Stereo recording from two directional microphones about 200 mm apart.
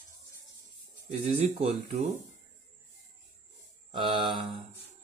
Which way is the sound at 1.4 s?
30° right (ahead or behind).